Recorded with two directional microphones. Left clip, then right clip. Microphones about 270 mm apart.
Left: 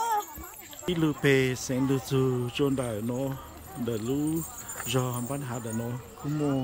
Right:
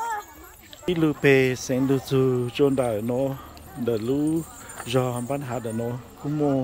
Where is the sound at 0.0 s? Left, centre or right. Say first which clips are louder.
Left 1 dB; left.